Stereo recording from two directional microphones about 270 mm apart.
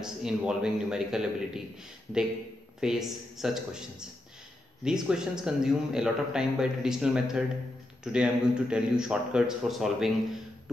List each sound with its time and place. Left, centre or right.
0.0 s a man's voice: centre
2.8 s a man's voice: centre